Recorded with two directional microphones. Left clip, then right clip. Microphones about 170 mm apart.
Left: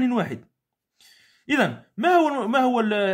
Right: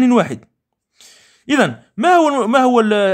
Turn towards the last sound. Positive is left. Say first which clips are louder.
# right 8 dB
turn(degrees=-35)  # may be behind; listen again after turning